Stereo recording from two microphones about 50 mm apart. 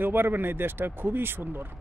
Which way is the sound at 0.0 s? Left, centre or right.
Right.